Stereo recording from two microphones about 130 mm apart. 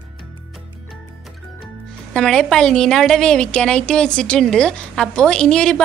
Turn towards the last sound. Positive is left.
turn(degrees=5)  # may be behind; listen again after turning